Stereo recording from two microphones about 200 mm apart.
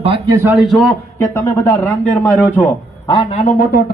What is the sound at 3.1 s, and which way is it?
Speech, 25° left (ahead or behind).